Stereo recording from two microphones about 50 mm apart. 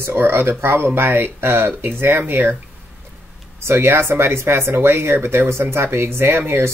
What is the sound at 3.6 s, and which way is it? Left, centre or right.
Speech, right.